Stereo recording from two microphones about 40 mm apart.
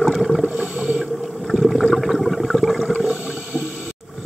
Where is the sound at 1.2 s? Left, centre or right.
Centre.